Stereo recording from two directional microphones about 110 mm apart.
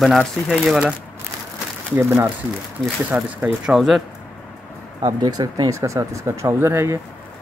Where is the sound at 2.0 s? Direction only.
20° right (ahead or behind); by 4.0 s centre (ahead or behind).